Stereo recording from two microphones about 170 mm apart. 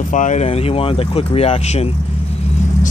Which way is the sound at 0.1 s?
45° left (ahead or behind).